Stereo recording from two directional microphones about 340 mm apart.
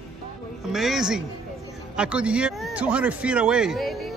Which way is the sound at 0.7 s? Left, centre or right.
Centre.